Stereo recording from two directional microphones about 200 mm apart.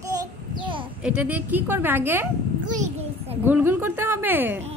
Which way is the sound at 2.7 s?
35° right (ahead or behind).